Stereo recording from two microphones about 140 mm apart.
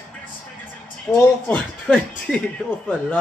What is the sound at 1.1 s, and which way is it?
Speech, 10° left (ahead or behind).